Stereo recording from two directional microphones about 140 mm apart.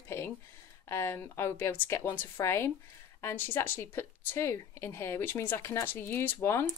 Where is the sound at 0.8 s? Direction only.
15° left (ahead or behind).